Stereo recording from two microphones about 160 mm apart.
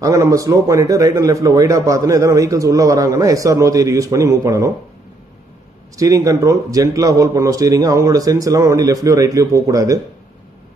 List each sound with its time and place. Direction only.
0.0 s a man's voice: 20° right (ahead or behind)
5.9 s a man's voice: 20° right (ahead or behind)